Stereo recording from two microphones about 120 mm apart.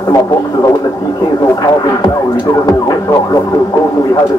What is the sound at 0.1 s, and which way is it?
Speech, 30° left (ahead or behind).